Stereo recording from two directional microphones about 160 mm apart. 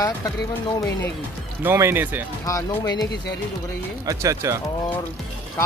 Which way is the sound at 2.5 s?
20° left (ahead or behind).